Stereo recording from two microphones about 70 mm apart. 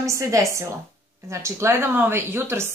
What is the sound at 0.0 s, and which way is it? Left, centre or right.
A woman's voice, right.